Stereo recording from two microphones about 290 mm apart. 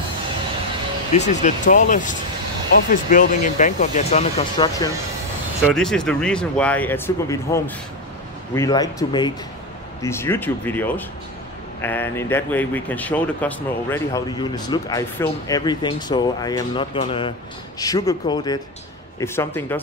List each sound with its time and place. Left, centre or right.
1.1 s speech: left
5.8 s speech: centre